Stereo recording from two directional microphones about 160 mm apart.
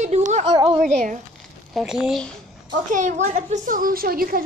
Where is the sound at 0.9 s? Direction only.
45° right (ahead or behind).